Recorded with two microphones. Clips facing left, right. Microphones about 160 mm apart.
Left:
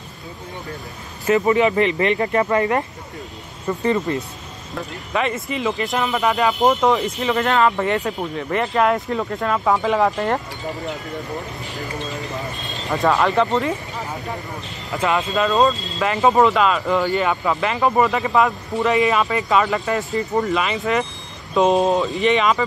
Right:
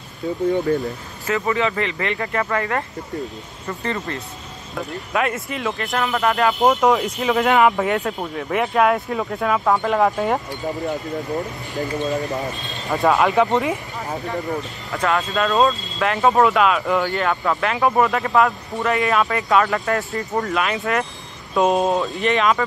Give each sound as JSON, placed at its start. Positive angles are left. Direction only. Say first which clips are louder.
{"t": 1.3, "sound": "speech", "louder": "left 5 dB", "side_deg": 20}
{"t": 4.7, "sound": "speech", "louder": "right 1 dB", "side_deg": -5}
{"t": 5.8, "sound": "speech", "louder": "left 1 dB", "side_deg": 10}
{"t": 12.8, "sound": "speech", "louder": "right 1 dB", "side_deg": 0}
{"t": 13.5, "sound": "speech", "louder": "right 1 dB", "side_deg": -15}
{"t": 15.1, "sound": "speech", "louder": "left 1 dB", "side_deg": 0}